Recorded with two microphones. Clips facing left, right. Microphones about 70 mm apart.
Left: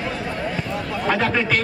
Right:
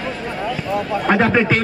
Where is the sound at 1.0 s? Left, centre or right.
Right.